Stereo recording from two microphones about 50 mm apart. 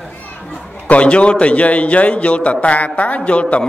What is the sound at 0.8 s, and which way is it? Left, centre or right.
A man's voice, left.